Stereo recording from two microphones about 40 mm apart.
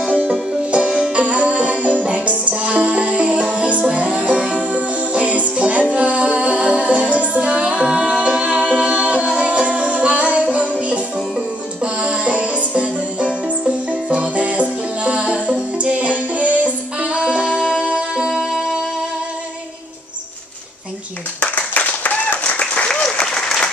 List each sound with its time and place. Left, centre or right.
0.0 s music: right
1.1 s music: right
7.6 s music: right
18.3 s music: centre
21.4 s a sound: left
23.2 s applause: centre